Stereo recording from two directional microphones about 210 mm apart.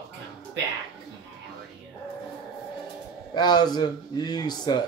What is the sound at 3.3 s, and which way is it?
Speech, 20° left (ahead or behind).